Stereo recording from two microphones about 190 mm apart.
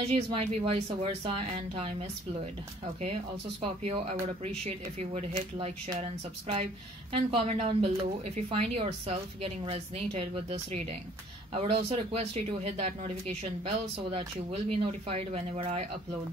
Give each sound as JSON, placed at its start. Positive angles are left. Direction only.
{"t": 0.1, "sound": "speech", "side_deg": -30}
{"t": 3.8, "sound": "speech", "side_deg": -30}